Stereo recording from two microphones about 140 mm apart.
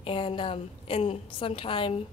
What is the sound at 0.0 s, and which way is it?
A woman's voice, 40° left (ahead or behind).